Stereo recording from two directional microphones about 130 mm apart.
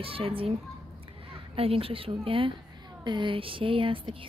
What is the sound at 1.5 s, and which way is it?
A woman's voice, 45° right (ahead or behind).